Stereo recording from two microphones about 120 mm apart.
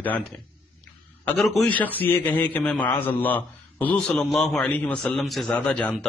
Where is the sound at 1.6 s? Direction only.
15° left (ahead or behind).